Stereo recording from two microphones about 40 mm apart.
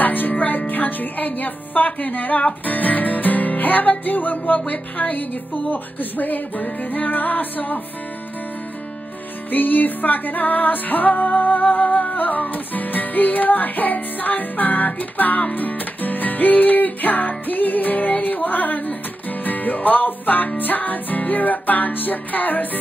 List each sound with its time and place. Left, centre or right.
0.0 s speech: left
2.6 s music: left
9.5 s music: left